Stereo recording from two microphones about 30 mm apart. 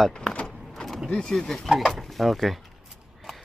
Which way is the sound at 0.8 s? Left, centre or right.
Centre.